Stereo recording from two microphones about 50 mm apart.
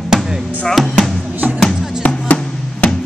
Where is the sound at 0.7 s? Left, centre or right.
Centre.